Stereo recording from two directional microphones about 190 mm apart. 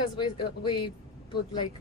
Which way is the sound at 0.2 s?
25° left (ahead or behind).